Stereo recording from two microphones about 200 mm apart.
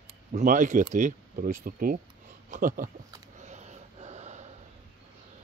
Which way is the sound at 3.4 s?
35° right (ahead or behind).